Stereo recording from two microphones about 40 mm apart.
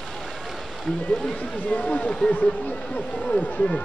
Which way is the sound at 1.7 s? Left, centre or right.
Left.